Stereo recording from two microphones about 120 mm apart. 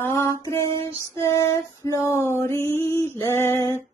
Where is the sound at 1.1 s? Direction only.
25° left (ahead or behind).